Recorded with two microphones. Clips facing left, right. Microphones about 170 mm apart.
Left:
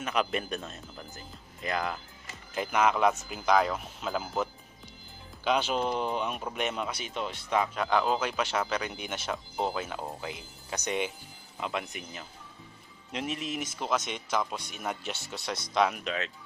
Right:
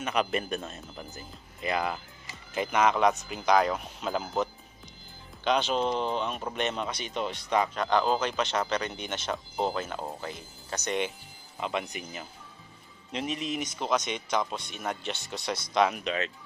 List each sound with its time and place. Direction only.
0.0 s speech: centre (ahead or behind)